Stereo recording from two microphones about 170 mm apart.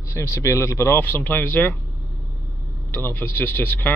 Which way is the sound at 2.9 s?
10° left (ahead or behind).